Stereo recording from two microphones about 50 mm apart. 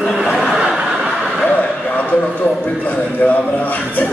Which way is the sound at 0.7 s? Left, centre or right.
Centre.